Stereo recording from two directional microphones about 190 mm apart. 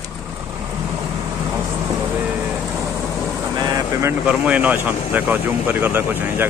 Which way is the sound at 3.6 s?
20° right (ahead or behind).